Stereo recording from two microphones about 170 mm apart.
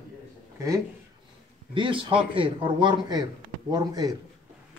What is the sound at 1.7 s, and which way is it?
A man's voice, 30° right (ahead or behind).